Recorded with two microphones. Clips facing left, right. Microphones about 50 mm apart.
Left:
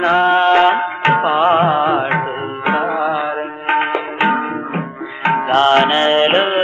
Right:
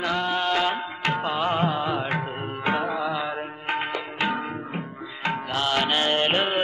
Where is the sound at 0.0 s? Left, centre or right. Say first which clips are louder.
Left 13 dB; left.